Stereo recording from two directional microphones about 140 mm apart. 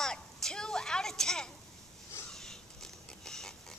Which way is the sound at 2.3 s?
5° left (ahead or behind).